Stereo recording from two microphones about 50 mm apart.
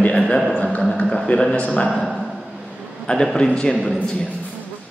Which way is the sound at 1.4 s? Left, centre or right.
Left.